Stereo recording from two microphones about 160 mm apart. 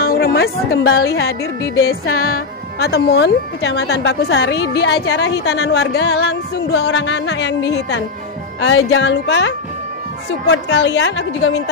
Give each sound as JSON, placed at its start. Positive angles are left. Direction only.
{"t": 0.0, "sound": "a woman's voice", "side_deg": 75}
{"t": 1.4, "sound": "speech", "side_deg": 20}
{"t": 1.9, "sound": "a woman's voice", "side_deg": 70}
{"t": 10.4, "sound": "a woman's voice", "side_deg": 90}